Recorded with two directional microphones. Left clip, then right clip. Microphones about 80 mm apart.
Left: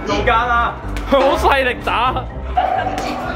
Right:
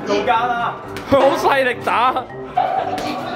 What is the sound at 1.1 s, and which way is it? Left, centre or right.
Speech, centre.